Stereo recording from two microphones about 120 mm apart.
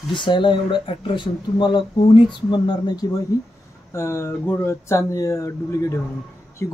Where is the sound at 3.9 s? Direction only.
25° left (ahead or behind).